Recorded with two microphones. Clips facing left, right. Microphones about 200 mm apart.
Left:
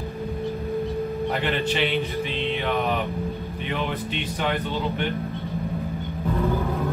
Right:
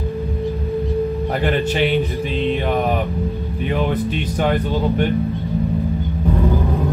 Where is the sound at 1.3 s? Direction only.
45° right (ahead or behind).